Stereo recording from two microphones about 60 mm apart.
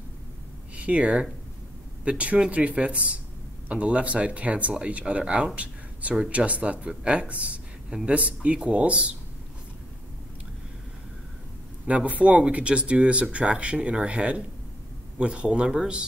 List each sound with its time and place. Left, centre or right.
0.7 s speech: right
11.8 s speech: right